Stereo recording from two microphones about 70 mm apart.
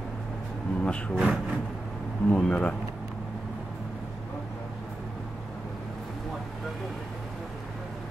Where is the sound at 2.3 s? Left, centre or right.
Centre.